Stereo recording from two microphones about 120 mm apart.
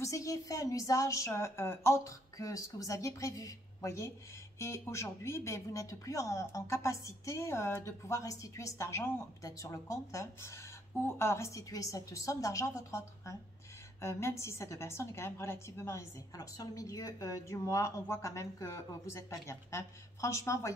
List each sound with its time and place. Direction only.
0.0 s a woman's voice: 25° left (ahead or behind)